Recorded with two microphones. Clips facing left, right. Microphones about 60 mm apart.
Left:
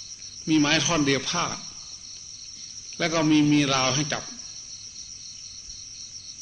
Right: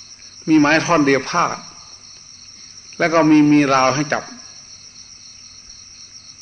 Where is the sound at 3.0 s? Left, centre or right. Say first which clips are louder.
Right 9 dB; right.